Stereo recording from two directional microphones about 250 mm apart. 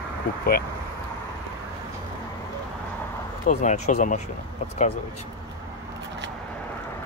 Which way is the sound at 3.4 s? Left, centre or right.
Left.